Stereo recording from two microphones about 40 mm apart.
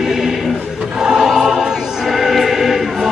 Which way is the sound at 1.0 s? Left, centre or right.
Centre.